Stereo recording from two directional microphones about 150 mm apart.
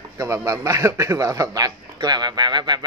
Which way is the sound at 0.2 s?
20° right (ahead or behind).